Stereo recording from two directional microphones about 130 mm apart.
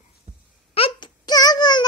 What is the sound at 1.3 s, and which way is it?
Child singing, 30° left (ahead or behind).